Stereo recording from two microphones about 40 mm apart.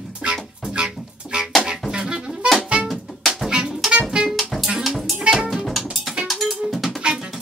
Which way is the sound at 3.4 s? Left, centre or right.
Right.